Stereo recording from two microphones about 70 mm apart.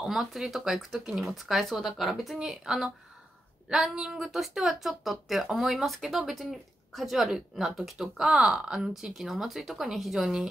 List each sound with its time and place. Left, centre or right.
0.0 s speech: centre